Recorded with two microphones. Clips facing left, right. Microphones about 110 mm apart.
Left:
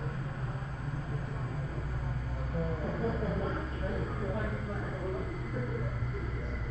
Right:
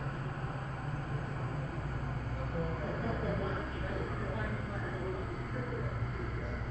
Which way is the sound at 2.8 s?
30° left (ahead or behind).